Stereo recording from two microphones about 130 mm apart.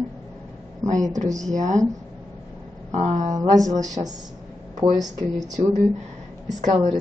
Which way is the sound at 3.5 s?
25° right (ahead or behind).